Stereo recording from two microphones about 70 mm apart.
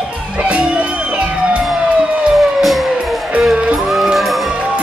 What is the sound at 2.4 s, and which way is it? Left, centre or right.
Music, centre.